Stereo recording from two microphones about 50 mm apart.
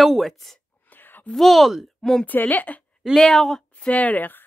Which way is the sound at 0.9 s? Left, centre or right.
Left.